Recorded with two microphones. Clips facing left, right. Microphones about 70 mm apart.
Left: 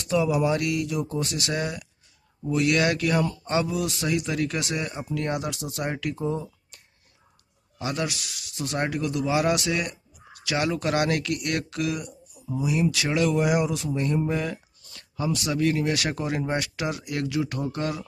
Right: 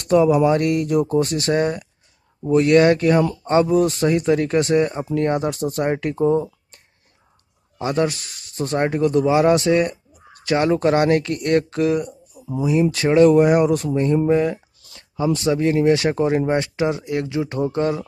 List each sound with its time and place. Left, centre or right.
0.0 s speech: right
7.8 s speech: right
13.9 s speech: right